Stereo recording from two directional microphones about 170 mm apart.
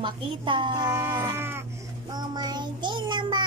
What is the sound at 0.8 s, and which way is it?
Cat, 15° right (ahead or behind).